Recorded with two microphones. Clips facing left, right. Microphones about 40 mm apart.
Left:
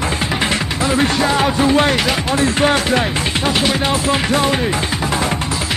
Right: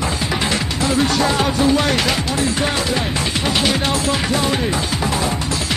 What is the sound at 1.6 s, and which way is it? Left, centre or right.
Speech, left.